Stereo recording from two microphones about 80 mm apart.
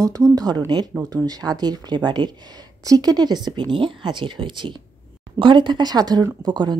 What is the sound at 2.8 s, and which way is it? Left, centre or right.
Speech, right.